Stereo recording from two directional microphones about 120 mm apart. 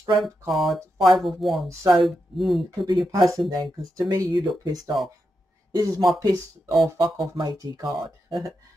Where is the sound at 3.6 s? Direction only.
30° right (ahead or behind).